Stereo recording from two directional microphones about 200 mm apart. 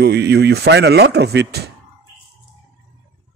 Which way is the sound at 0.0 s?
55° right (ahead or behind).